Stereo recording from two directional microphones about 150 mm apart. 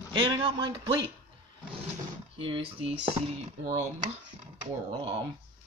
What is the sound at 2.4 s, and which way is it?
Speech, 35° right (ahead or behind).